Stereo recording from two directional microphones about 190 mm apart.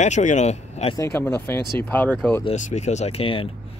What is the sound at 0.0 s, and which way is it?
Speech, 40° left (ahead or behind).